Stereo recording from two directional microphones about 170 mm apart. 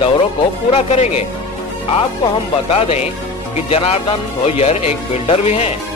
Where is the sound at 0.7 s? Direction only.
40° left (ahead or behind).